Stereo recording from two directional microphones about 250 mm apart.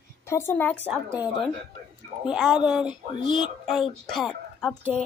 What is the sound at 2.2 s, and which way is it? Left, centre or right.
A woman's voice, centre.